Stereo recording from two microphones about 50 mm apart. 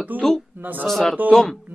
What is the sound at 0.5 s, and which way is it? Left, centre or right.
Speech, right.